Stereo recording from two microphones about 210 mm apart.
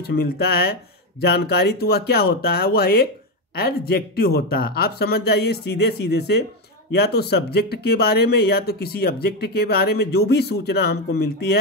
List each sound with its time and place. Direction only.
0.0 s speech: 50° left (ahead or behind)